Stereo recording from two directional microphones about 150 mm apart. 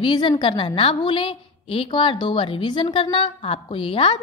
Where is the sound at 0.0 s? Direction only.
30° left (ahead or behind).